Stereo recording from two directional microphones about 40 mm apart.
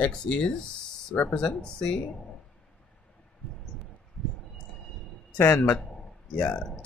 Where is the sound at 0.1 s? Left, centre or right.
Left.